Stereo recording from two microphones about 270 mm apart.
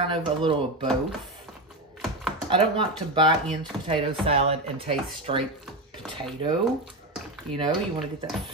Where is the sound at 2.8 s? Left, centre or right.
Centre.